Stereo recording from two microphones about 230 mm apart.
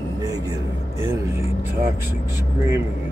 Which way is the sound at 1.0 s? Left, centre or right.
Centre.